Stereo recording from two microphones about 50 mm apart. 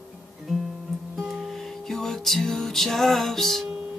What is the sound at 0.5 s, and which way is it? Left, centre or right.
Guitar, centre.